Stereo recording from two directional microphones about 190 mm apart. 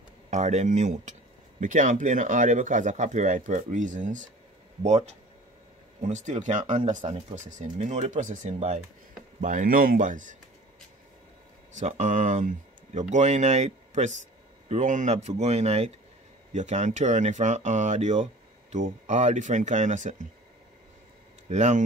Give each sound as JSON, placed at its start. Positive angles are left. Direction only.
{"t": 0.3, "sound": "speech", "side_deg": -40}
{"t": 11.7, "sound": "speech", "side_deg": -40}
{"t": 21.5, "sound": "speech", "side_deg": -40}